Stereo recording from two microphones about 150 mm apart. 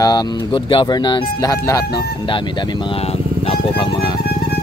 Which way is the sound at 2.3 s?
30° left (ahead or behind).